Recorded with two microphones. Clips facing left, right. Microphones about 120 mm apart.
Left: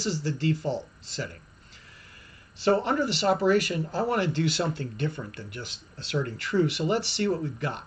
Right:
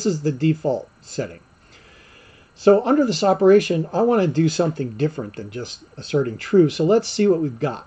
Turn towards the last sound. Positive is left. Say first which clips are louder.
# right 10 dB
turn(degrees=-45)  # may be behind; listen again after turning